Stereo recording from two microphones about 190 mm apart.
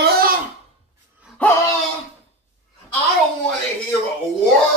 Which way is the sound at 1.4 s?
10° left (ahead or behind).